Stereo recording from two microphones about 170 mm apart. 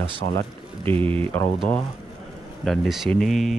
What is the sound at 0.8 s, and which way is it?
Speech, 30° right (ahead or behind).